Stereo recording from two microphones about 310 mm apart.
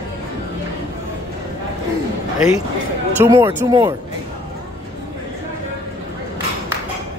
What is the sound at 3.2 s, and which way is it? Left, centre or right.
Speech, centre.